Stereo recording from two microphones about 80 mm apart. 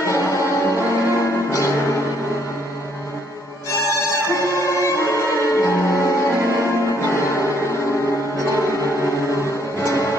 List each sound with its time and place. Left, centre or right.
0.0 s music: left
3.8 s music: left
9.8 s music: left